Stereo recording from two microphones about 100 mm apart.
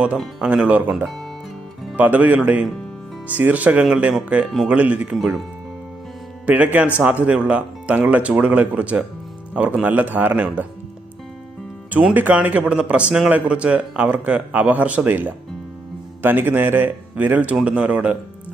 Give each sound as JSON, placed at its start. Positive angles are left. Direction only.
{"t": 0.4, "sound": "speech", "side_deg": -10}
{"t": 6.4, "sound": "speech", "side_deg": -15}
{"t": 11.9, "sound": "speech", "side_deg": -15}